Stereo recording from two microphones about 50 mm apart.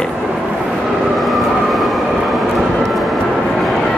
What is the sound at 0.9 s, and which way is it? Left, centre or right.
Vehicle, centre.